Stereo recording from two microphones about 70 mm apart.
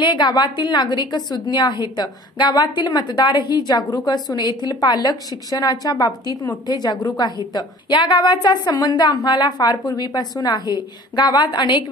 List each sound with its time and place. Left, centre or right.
0.1 s a woman's voice: left